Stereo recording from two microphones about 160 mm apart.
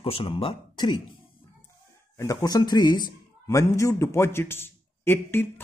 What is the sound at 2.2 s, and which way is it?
A man's voice, 20° left (ahead or behind).